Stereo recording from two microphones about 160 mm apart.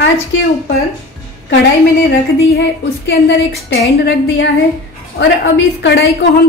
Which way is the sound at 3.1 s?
85° left.